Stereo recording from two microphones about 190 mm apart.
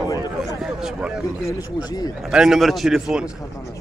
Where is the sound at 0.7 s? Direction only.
Centre (ahead or behind).